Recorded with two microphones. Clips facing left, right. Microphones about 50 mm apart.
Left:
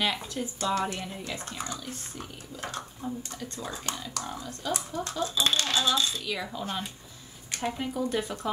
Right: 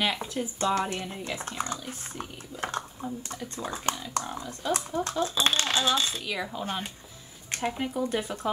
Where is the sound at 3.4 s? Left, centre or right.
Centre.